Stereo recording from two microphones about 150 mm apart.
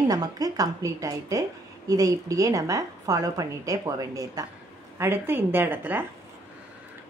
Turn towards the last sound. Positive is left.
turn(degrees=-15)  # may be behind; listen again after turning